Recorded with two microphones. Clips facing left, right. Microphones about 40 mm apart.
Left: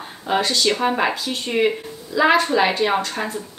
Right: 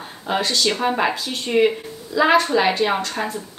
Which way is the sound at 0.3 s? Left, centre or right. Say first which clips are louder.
Left 1 dB; centre.